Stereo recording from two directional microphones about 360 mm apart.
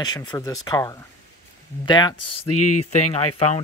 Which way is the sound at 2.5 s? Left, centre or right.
Left.